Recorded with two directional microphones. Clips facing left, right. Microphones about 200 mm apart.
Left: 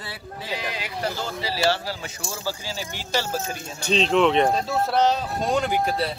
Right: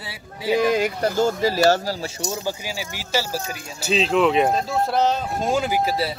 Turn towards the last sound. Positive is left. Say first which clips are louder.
# right 1 dB
turn(degrees=-5)  # may be behind; listen again after turning